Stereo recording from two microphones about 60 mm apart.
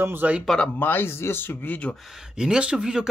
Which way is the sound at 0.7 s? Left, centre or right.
Left.